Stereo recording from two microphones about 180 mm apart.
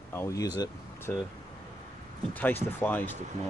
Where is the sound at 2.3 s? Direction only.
10° left (ahead or behind).